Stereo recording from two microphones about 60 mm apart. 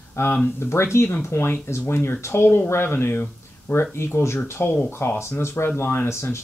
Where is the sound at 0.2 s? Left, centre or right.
Left.